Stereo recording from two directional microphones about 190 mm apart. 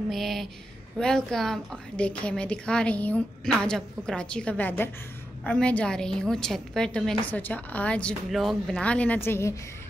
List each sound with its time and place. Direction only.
0.1 s a woman's voice: centre (ahead or behind)